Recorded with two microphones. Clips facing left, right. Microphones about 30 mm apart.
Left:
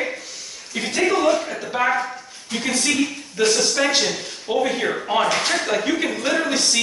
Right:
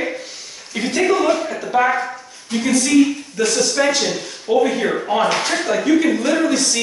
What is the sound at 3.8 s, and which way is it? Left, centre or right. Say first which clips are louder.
Speech: right 2 dB; centre.